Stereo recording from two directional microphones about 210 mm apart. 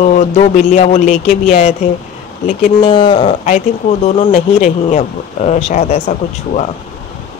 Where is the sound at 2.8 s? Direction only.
25° left (ahead or behind).